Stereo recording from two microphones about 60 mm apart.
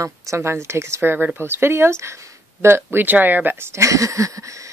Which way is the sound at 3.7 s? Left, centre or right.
Right.